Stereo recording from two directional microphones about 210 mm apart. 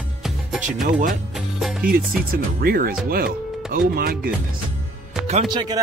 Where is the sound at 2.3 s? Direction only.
45° right (ahead or behind).